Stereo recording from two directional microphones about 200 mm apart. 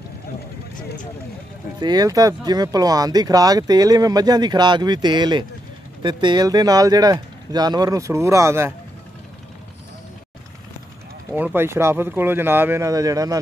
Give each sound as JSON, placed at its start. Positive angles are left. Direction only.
{"t": 1.8, "sound": "speech", "side_deg": -20}
{"t": 11.3, "sound": "speech", "side_deg": -10}